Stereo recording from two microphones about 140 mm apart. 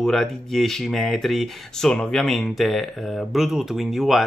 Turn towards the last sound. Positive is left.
turn(degrees=0)  # may be behind; listen again after turning